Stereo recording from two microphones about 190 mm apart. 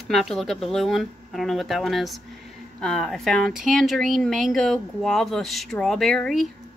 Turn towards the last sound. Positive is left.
turn(degrees=0)  # may be behind; listen again after turning